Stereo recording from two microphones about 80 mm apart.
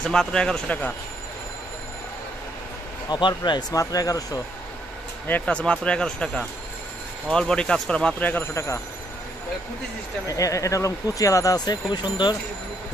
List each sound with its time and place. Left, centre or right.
0.0 s speech: centre
3.1 s speech: left
3.7 s speech: left
5.2 s speech: centre
8.2 s speech: left
8.5 s speech: left
10.2 s speech: left